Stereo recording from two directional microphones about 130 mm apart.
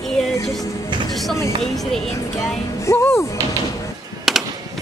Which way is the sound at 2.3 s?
20° left (ahead or behind).